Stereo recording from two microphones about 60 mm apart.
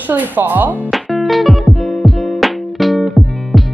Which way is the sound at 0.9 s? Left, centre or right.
Centre.